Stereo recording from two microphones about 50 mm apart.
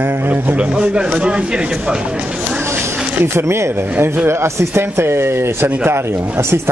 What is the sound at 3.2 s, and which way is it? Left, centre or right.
Speech, right.